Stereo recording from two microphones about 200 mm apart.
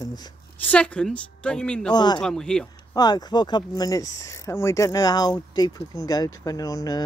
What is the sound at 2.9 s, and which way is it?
Speech, 20° left (ahead or behind).